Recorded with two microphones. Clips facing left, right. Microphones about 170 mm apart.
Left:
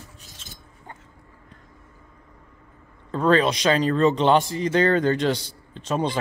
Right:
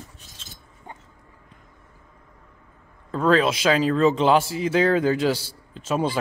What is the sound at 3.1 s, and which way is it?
Speech, centre (ahead or behind).